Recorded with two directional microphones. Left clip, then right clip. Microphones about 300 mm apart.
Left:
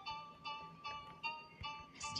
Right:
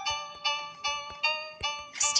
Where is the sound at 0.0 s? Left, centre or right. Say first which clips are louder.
Right 16 dB; right.